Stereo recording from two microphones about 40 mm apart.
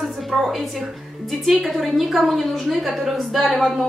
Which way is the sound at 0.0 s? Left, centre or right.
Centre.